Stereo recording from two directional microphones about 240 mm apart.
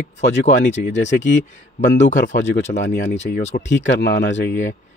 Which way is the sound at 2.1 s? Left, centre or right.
Left.